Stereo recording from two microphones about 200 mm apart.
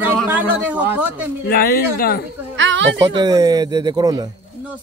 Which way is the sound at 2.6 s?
65° right (ahead or behind).